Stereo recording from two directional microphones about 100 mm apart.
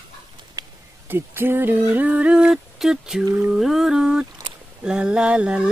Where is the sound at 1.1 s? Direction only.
20° right (ahead or behind); by 3.2 s 5° right (ahead or behind).